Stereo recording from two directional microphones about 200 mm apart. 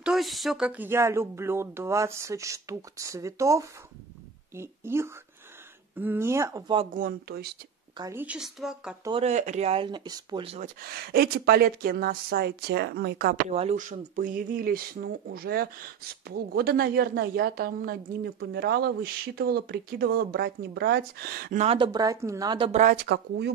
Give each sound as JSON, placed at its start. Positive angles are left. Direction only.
{"t": 0.0, "sound": "speech", "side_deg": 0}
{"t": 7.0, "sound": "speech", "side_deg": -50}
{"t": 8.0, "sound": "speech", "side_deg": -10}
{"t": 9.2, "sound": "speech", "side_deg": -35}
{"t": 10.8, "sound": "speech", "side_deg": -50}
{"t": 13.5, "sound": "speech", "side_deg": -35}
{"t": 21.6, "sound": "speech", "side_deg": -25}
{"t": 22.7, "sound": "speech", "side_deg": -40}
{"t": 23.0, "sound": "speech", "side_deg": -60}